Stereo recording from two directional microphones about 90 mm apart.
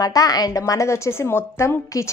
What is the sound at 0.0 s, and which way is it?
A woman's voice, 45° left (ahead or behind).